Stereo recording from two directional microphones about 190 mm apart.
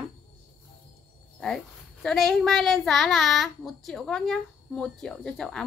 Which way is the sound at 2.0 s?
Centre (ahead or behind).